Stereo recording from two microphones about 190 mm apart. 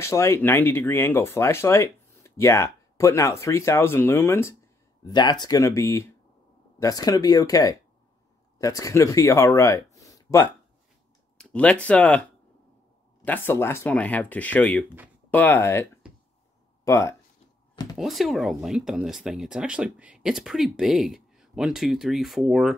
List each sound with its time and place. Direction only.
0.0 s speech: 15° left (ahead or behind)
17.9 s speech: centre (ahead or behind)